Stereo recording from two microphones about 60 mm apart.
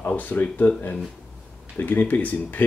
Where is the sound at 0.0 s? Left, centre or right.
Left.